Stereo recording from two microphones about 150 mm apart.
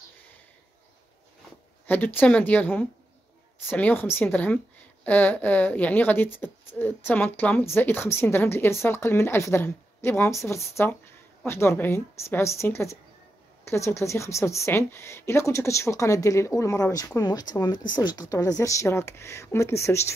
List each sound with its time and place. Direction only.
1.9 s a woman's voice: 10° left (ahead or behind)